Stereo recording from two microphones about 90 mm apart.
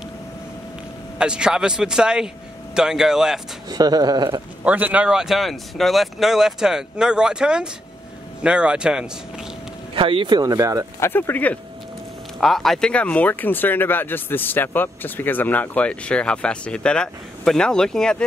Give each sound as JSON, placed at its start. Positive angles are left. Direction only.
{"t": 1.1, "sound": "a man's voice", "side_deg": -10}
{"t": 3.6, "sound": "speech", "side_deg": -45}
{"t": 4.6, "sound": "speech", "side_deg": -15}
{"t": 9.9, "sound": "speech", "side_deg": -75}
{"t": 10.3, "sound": "speech", "side_deg": -40}
{"t": 11.0, "sound": "speech", "side_deg": 25}
{"t": 12.4, "sound": "speech", "side_deg": 5}